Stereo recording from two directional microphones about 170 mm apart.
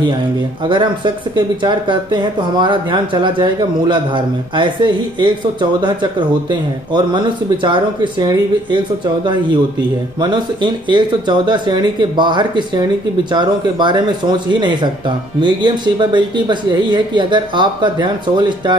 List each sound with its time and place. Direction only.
0.7 s speech: 30° right (ahead or behind)
7.6 s speech: 25° right (ahead or behind)
10.2 s speech: 25° right (ahead or behind)